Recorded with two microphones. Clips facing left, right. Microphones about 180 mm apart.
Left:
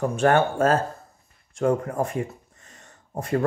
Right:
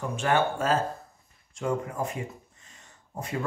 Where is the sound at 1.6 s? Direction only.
50° left (ahead or behind).